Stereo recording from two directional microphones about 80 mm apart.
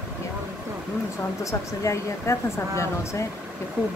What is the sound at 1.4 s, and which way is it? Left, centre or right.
Speech, left.